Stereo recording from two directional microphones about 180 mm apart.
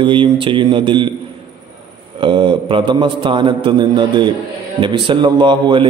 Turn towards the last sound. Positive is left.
turn(degrees=-25)  # may be behind; listen again after turning